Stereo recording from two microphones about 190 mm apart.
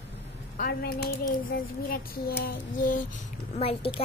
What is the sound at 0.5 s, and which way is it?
Speech, 55° left (ahead or behind).